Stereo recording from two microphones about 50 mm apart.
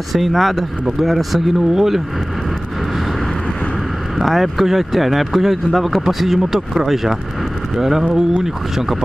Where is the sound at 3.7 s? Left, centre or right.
Centre.